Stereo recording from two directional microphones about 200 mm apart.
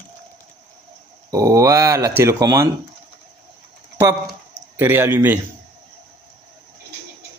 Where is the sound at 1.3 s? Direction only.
15° right (ahead or behind).